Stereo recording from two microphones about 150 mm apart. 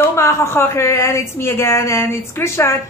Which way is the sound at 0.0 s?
20° left (ahead or behind).